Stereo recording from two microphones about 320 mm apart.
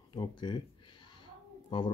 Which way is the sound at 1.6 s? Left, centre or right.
Centre.